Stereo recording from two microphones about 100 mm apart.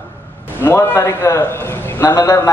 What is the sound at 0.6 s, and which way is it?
A man's voice, 25° left (ahead or behind).